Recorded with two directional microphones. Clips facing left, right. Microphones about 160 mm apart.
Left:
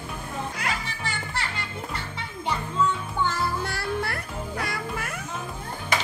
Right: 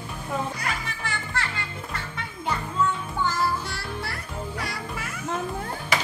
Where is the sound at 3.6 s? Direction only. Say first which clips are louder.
Left 5 dB; 55° left (ahead or behind).